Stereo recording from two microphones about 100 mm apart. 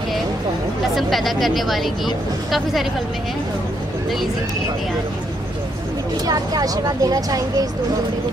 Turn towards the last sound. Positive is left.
turn(degrees=-35)  # may be behind; listen again after turning